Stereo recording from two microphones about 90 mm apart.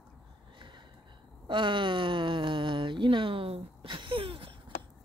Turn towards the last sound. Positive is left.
turn(degrees=-85)